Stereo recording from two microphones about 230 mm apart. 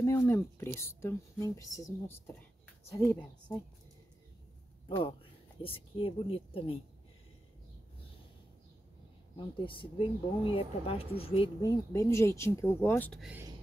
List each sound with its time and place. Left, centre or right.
0.0 s a sound: centre
0.7 s speech: centre
4.8 s a woman's voice: left
9.7 s speech: left; by 13.3 s centre
13.3 s speech: centre